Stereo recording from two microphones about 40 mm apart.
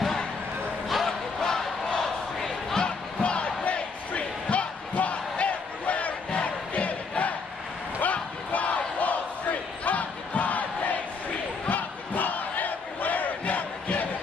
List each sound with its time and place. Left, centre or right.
0.8 s a sound: centre
1.4 s crowd: centre
3.2 s crowd: left
8.0 s battle cry: left
11.7 s crowd: left